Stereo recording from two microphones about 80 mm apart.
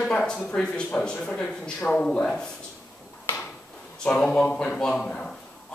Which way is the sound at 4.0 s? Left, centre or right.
Centre.